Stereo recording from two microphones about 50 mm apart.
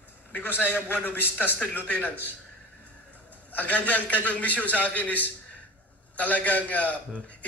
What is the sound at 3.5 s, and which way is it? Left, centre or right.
A man's voice, left.